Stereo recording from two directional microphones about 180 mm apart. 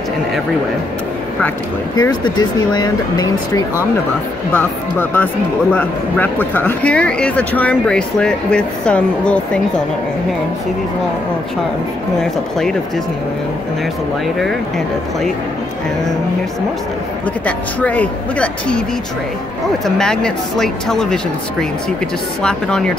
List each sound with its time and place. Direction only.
2.0 s speech: 20° left (ahead or behind)
4.5 s speech: 10° left (ahead or behind)
17.5 s speech: 10° left (ahead or behind)
20.0 s speech: 5° left (ahead or behind)